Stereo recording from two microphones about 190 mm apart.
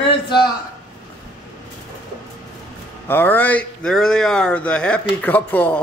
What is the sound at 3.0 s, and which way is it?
Speech, 10° left (ahead or behind).